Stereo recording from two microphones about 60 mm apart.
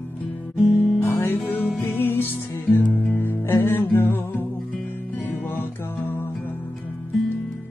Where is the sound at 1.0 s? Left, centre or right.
Left.